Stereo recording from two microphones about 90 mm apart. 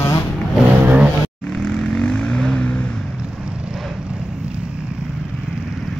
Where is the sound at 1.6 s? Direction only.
10° left (ahead or behind).